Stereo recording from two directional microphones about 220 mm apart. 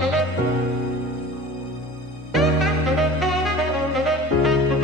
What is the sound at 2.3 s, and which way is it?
Music, centre (ahead or behind).